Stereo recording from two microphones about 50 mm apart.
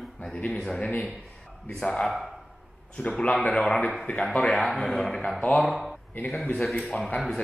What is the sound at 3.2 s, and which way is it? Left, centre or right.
A man's voice, left.